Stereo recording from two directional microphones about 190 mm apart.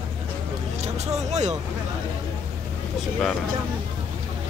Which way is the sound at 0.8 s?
35° right (ahead or behind).